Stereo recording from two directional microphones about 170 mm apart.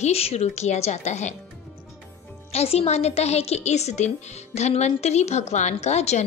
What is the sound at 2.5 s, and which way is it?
A woman's voice, 35° left (ahead or behind).